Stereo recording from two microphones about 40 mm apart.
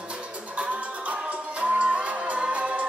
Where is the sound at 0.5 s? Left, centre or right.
Right.